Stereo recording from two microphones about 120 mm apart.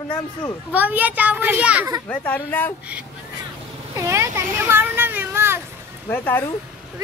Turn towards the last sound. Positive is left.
turn(degrees=15)  # may be behind; listen again after turning